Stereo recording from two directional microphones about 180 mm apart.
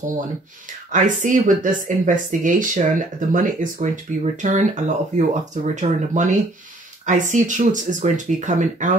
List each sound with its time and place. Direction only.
0.9 s speech: 45° right (ahead or behind)